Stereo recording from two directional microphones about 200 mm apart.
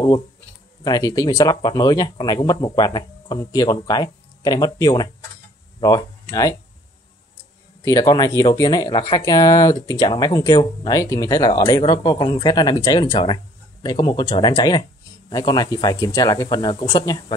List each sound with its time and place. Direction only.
0.8 s speech: 20° left (ahead or behind)
7.8 s speech: 15° left (ahead or behind)